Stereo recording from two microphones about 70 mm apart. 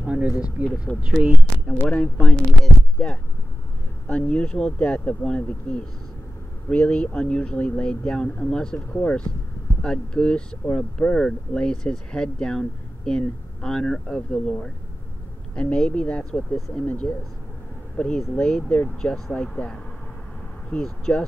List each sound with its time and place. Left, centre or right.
0.0 s speech: centre
0.9 s speech: centre